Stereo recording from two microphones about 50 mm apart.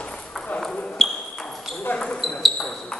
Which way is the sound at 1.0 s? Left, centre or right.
Centre.